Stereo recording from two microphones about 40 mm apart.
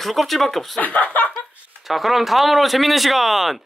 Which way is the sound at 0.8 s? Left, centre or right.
Left.